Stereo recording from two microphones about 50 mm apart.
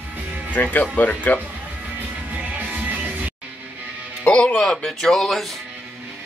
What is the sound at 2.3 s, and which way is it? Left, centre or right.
Music, right.